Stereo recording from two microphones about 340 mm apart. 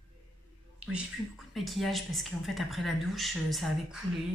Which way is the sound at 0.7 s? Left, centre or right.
Centre.